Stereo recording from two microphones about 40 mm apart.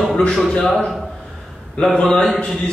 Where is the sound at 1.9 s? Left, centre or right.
Left.